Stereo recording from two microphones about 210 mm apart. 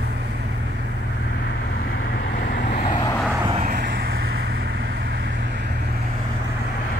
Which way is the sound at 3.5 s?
40° right (ahead or behind).